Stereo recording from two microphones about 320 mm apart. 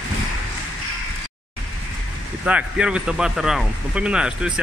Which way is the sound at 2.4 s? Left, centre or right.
Centre.